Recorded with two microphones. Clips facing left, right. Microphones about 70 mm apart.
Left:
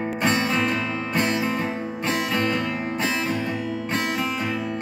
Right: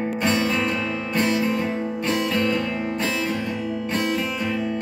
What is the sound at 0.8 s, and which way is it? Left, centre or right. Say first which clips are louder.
Music: right 1 dB; left.